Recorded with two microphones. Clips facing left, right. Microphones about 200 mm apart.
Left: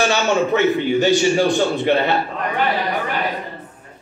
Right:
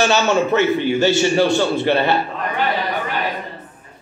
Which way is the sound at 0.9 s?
15° left (ahead or behind).